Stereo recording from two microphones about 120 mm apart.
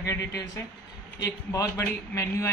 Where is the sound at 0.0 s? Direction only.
25° left (ahead or behind).